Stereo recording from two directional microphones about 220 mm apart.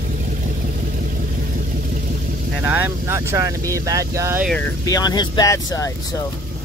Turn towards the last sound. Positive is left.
turn(degrees=15)  # may be behind; listen again after turning